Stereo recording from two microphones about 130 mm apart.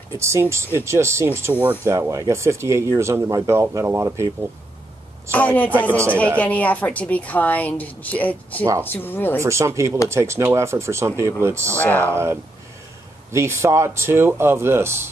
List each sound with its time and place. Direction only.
0.2 s speech: 20° right (ahead or behind)
2.0 s speech: 25° right (ahead or behind)
5.3 s a woman's voice: 10° left (ahead or behind)
9.4 s speech: 20° right (ahead or behind)
11.6 s a woman's voice: 15° left (ahead or behind)
12.1 s speech: 20° right (ahead or behind)